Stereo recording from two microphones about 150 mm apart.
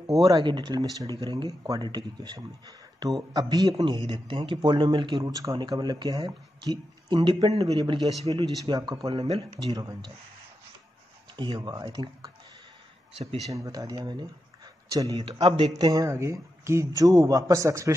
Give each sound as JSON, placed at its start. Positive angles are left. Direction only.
{"t": 0.2, "sound": "speech", "side_deg": -30}
{"t": 9.2, "sound": "speech", "side_deg": -45}
{"t": 9.7, "sound": "speech", "side_deg": -25}
{"t": 11.3, "sound": "speech", "side_deg": -30}
{"t": 13.1, "sound": "speech", "side_deg": -40}
{"t": 13.5, "sound": "speech", "side_deg": -20}
{"t": 15.2, "sound": "a man's voice", "side_deg": -35}